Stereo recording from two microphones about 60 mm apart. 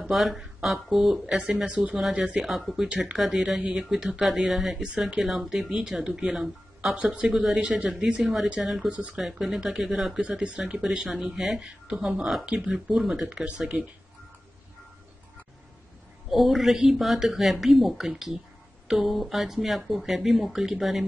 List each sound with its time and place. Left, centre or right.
0.1 s speech: centre
2.9 s speech: centre
3.2 s speech: centre
7.0 s speech: centre
8.8 s speech: right
9.1 s speech: centre
16.3 s speech: centre